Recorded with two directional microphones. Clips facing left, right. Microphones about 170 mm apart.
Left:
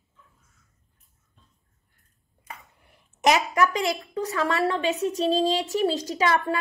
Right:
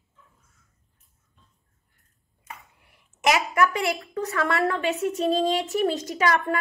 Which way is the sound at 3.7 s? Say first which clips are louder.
Even; 20° left (ahead or behind).